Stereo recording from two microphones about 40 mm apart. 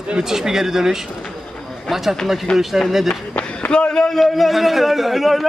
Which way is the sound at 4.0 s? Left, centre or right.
Centre.